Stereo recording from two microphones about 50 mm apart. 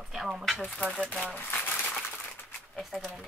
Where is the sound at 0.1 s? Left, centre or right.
Centre.